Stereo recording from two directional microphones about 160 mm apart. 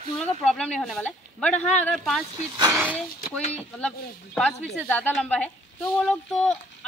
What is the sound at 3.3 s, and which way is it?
Speech, 5° left (ahead or behind).